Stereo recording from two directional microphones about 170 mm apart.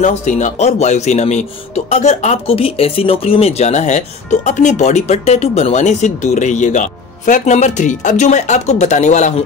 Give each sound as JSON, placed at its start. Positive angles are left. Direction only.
{"t": 0.0, "sound": "speech", "side_deg": 45}